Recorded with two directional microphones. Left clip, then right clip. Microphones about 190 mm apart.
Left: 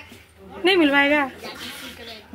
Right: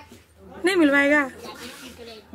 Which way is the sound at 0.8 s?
Centre (ahead or behind).